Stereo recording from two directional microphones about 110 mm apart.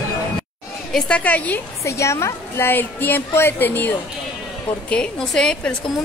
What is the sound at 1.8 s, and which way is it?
A woman's voice, 25° left (ahead or behind).